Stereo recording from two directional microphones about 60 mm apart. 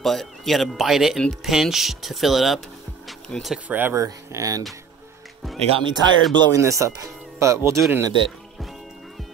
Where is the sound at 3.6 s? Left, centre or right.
Right.